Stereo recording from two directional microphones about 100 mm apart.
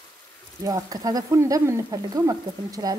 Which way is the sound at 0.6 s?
35° right (ahead or behind).